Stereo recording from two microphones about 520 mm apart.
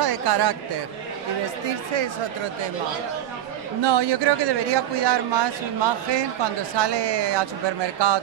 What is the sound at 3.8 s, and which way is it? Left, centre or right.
Speech, right.